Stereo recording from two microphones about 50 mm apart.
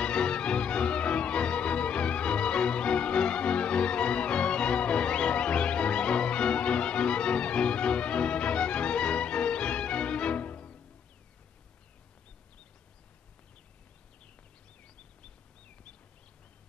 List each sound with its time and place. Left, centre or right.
0.0 s music: centre